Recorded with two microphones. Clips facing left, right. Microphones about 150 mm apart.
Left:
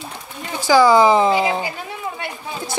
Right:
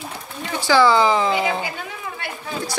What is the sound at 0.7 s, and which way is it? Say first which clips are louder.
Speech: left 3 dB; 20° left (ahead or behind).